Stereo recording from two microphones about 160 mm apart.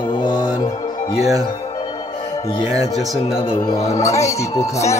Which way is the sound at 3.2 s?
35° left (ahead or behind).